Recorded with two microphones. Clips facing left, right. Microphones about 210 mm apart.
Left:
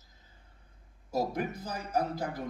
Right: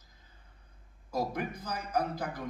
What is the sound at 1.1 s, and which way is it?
A man's voice, 25° left (ahead or behind).